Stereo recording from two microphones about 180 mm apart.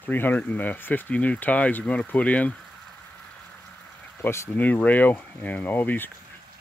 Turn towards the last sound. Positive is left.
turn(degrees=10)  # may be behind; listen again after turning